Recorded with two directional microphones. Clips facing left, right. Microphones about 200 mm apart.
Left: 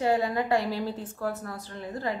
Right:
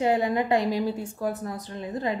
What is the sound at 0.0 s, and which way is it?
A woman's voice, 20° right (ahead or behind).